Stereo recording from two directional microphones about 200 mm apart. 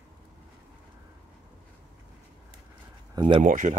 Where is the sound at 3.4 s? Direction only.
40° right (ahead or behind).